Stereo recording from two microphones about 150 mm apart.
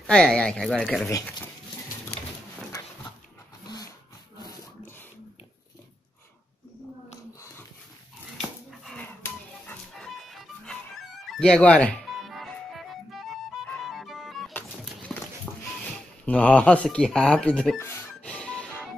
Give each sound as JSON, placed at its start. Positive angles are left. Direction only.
{"t": 0.0, "sound": "speech", "side_deg": 5}
{"t": 1.0, "sound": "speech", "side_deg": 15}
{"t": 3.6, "sound": "vehicle", "side_deg": 25}
{"t": 4.4, "sound": "wood", "side_deg": 25}
{"t": 8.4, "sound": "dog", "side_deg": 5}
{"t": 9.2, "sound": "music", "side_deg": 5}
{"t": 15.1, "sound": "a sound", "side_deg": 0}
{"t": 16.3, "sound": "speech", "side_deg": 10}
{"t": 17.7, "sound": "music", "side_deg": 10}